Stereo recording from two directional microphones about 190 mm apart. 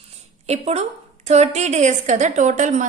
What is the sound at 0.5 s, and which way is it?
A woman's voice, 35° right (ahead or behind).